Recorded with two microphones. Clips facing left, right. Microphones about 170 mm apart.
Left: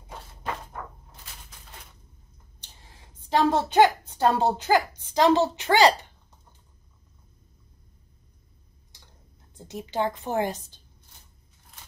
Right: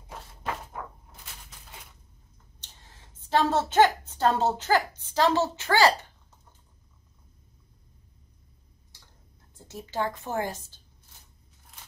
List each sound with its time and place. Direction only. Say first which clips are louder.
0.1 s a sound: even; centre (ahead or behind)
3.3 s a woman's voice: left 2 dB; 15° left (ahead or behind)
9.6 s a woman's voice: left 3 dB; 20° left (ahead or behind)